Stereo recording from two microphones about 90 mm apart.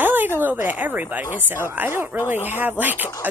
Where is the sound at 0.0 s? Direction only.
20° right (ahead or behind).